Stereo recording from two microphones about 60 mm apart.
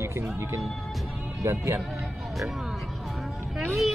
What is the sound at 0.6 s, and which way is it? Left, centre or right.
Music, centre.